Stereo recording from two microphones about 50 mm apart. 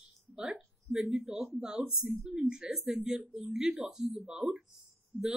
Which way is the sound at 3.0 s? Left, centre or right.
Centre.